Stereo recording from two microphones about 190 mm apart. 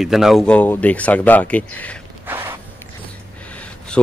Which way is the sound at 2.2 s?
10° right (ahead or behind).